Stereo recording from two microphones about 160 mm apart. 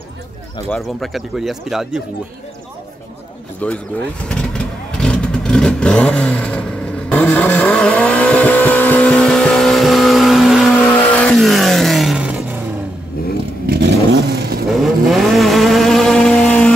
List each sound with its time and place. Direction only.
0.7 s speech: centre (ahead or behind)
3.6 s speech: 10° left (ahead or behind)
4.3 s vehicle: 5° left (ahead or behind)
13.7 s vehicle: 90° right
14.8 s vehicle: centre (ahead or behind)